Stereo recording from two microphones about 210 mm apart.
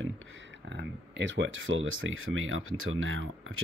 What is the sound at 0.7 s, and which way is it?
Speech, 55° right (ahead or behind).